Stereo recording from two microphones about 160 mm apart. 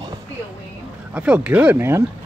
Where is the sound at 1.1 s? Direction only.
5° right (ahead or behind).